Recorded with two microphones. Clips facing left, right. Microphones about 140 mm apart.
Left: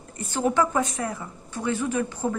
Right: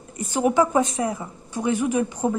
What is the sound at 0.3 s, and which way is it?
A woman's voice, 15° right (ahead or behind).